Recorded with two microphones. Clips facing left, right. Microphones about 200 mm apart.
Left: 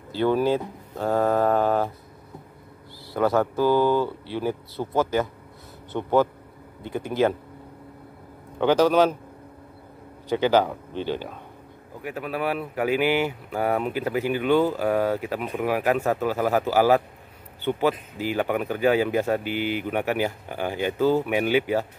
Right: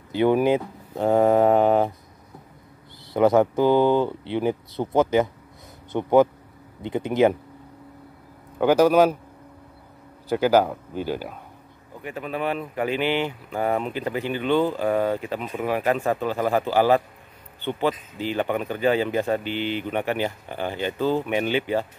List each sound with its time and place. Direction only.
0.1 s speech: 15° right (ahead or behind)
3.1 s speech: 20° right (ahead or behind)
8.5 s speech: 10° right (ahead or behind)
10.3 s speech: 5° right (ahead or behind)
12.0 s speech: 5° left (ahead or behind)